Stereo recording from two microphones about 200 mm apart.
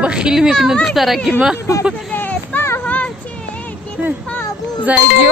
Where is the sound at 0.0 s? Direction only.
5° right (ahead or behind).